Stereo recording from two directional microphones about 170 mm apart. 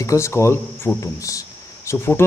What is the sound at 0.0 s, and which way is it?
Speech, 15° left (ahead or behind).